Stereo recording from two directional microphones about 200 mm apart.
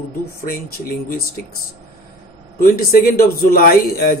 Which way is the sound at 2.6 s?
50° left (ahead or behind).